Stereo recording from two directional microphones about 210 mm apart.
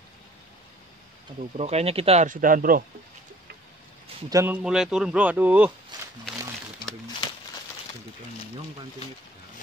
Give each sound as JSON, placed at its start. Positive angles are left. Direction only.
{"t": 1.6, "sound": "speech", "side_deg": -30}
{"t": 4.3, "sound": "speech", "side_deg": -10}